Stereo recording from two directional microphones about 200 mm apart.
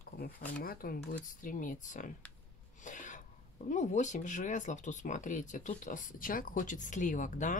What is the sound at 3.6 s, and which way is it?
Speech, 35° left (ahead or behind).